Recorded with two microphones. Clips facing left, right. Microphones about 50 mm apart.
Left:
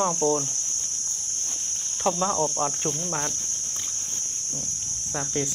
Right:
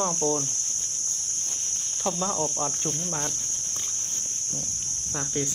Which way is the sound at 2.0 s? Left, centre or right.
Centre.